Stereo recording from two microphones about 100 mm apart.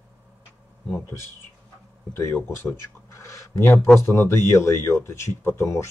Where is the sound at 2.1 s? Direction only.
25° left (ahead or behind).